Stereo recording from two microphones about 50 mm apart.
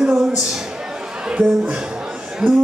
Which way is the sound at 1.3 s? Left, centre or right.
Centre.